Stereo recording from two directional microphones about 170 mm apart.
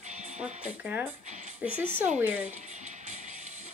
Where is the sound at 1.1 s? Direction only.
45° right (ahead or behind).